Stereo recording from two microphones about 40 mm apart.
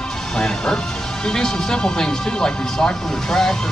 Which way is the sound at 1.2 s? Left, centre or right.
Centre.